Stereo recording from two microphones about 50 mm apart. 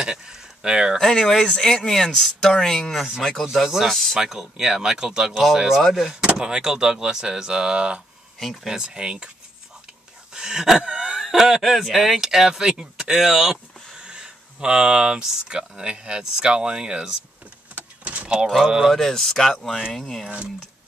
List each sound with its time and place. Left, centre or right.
0.0 s a sound: centre
0.9 s speech: centre
3.5 s speech: centre
3.8 s speech: centre
4.2 s speech: centre
10.3 s speech: centre
17.7 s vehicle: right
18.5 s speech: centre
18.9 s speech: centre